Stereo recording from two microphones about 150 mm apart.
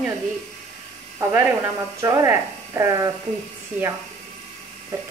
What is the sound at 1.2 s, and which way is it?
Speech, 15° right (ahead or behind).